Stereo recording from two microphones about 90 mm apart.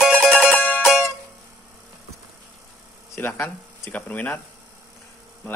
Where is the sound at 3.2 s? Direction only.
20° left (ahead or behind).